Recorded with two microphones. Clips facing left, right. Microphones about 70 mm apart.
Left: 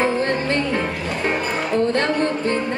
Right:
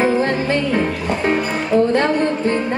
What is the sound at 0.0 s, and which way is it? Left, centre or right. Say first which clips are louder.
Music: right 3 dB; centre.